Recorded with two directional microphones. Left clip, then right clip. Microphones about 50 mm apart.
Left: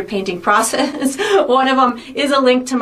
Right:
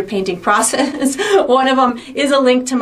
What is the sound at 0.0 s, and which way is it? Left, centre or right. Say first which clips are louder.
Speech: right 1 dB; right.